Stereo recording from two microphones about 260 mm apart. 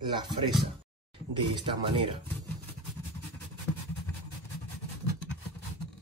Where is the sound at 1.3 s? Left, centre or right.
Centre.